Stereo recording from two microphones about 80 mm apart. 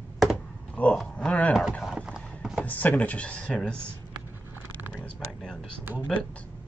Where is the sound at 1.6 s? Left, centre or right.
Centre.